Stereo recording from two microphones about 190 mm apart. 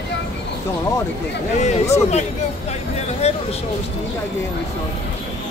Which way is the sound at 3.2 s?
35° left (ahead or behind).